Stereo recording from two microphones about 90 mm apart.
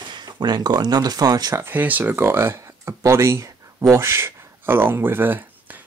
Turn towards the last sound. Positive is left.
turn(degrees=-20)  # may be behind; listen again after turning